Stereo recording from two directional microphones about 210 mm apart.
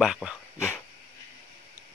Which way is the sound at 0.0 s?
5° right (ahead or behind).